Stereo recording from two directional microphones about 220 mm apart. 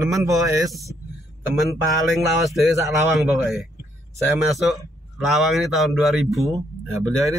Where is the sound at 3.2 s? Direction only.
Centre (ahead or behind).